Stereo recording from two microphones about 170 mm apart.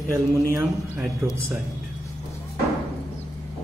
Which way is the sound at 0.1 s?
20° right (ahead or behind).